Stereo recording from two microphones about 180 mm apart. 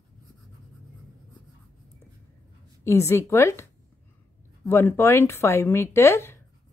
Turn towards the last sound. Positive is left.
turn(degrees=15)  # may be behind; listen again after turning